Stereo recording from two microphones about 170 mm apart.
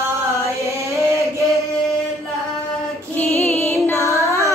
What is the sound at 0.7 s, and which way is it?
Chant, 15° right (ahead or behind).